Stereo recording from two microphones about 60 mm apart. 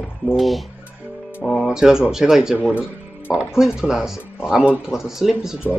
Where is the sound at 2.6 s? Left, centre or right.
Left.